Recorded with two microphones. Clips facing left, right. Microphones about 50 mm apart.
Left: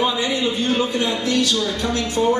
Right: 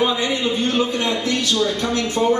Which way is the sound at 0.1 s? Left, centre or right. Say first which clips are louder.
Right 1 dB; right.